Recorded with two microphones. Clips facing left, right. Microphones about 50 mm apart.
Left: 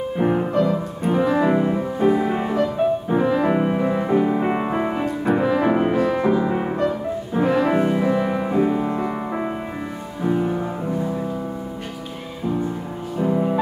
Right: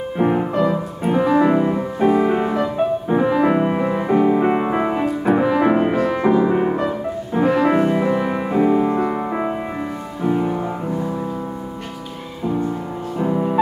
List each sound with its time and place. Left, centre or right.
0.2 s music: centre
13.2 s music: centre